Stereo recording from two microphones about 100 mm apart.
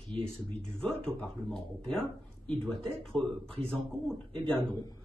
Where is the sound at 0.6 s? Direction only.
5° left (ahead or behind).